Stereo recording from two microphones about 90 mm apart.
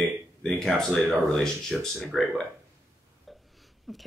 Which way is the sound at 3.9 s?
Centre (ahead or behind).